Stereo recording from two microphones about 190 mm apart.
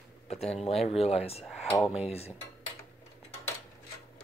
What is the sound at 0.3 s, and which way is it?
Speech, 35° left (ahead or behind).